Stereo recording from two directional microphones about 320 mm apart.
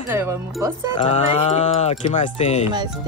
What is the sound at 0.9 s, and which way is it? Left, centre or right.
A woman's voice, centre.